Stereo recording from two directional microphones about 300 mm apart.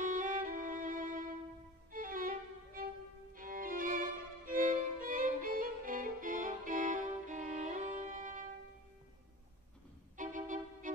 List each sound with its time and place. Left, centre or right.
0.0 s violin: right
10.1 s music: right